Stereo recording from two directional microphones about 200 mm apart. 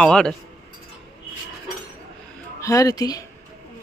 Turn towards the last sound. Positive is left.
turn(degrees=20)  # may be behind; listen again after turning